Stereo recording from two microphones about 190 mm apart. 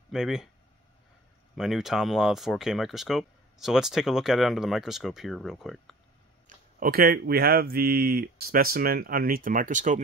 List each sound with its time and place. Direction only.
0.1 s speech: centre (ahead or behind)
1.5 s speech: centre (ahead or behind)
6.4 s speech: 50° right (ahead or behind)